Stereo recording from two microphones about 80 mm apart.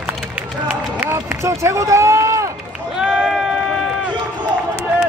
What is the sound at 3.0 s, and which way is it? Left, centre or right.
Run, centre.